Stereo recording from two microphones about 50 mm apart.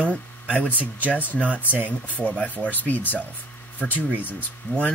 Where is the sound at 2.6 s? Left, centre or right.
Left.